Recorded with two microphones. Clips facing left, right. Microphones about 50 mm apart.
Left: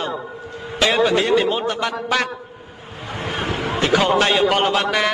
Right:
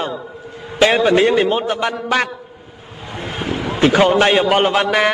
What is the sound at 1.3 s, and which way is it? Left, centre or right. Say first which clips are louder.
Speech: right 2 dB; centre.